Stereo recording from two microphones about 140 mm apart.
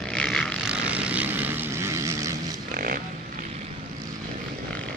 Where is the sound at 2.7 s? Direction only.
90° right.